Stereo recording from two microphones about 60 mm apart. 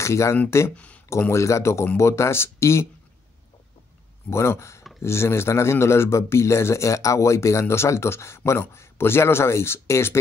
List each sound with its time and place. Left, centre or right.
0.0 s a man's voice: left
0.7 s a sound: left
1.3 s a man's voice: left
4.3 s a man's voice: left